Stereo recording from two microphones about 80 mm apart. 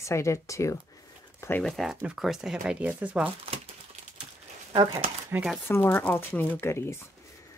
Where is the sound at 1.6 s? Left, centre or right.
Centre.